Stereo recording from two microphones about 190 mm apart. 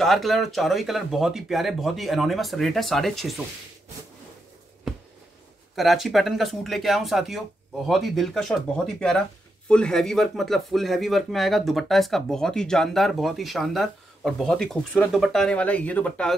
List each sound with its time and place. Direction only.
0.0 s speech: centre (ahead or behind)
5.8 s speech: centre (ahead or behind)